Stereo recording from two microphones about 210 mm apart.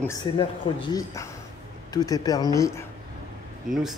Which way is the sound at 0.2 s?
25° left (ahead or behind).